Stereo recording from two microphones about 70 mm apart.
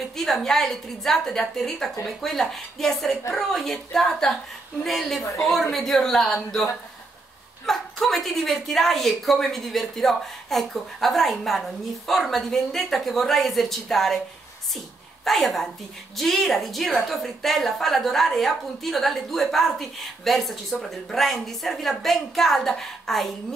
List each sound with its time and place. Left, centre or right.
0.1 s a woman's voice: centre
15.2 s a woman's voice: centre